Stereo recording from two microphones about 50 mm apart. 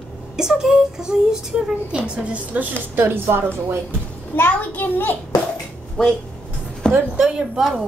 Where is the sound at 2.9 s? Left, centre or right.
Right.